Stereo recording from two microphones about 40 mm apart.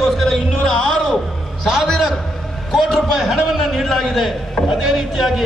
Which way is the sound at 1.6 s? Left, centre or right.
Centre.